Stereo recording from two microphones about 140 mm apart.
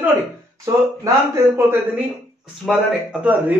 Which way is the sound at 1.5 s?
15° right (ahead or behind).